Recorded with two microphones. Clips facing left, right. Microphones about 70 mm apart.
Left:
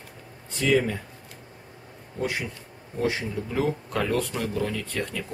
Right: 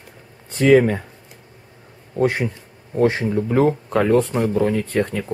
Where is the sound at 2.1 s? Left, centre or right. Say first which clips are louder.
Right 10 dB; right.